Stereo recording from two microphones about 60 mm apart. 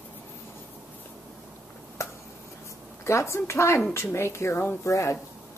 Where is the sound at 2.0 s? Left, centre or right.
Left.